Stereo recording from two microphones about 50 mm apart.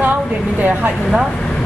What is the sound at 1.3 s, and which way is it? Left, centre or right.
Vehicle, centre.